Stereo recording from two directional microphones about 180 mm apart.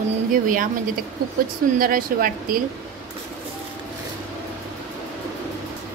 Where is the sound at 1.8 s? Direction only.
55° right (ahead or behind).